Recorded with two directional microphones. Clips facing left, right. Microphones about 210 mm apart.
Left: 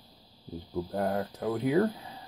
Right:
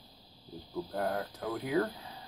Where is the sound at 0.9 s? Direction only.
20° left (ahead or behind).